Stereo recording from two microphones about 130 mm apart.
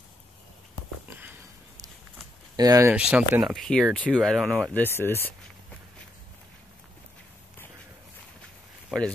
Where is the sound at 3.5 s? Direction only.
Centre (ahead or behind).